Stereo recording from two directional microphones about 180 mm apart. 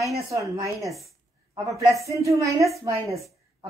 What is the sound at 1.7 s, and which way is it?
A woman's voice, 15° right (ahead or behind).